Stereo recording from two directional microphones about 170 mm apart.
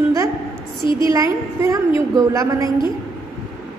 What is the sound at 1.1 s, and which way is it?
A woman's voice, 15° right (ahead or behind).